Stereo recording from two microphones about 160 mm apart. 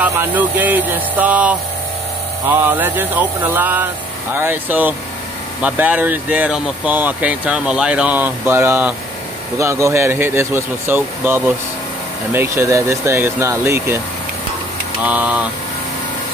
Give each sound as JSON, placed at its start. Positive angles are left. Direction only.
{"t": 0.0, "sound": "speech", "side_deg": -10}
{"t": 15.0, "sound": "speech", "side_deg": -10}